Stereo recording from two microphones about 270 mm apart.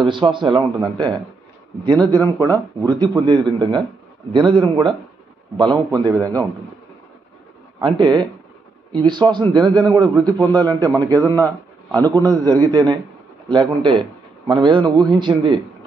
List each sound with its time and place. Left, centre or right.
0.0 s a man's voice: centre
6.1 s a man's voice: centre
7.8 s a man's voice: centre